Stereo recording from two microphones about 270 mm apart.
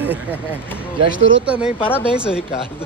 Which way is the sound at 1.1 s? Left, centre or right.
Right.